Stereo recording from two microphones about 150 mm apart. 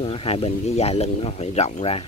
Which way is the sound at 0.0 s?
40° left (ahead or behind).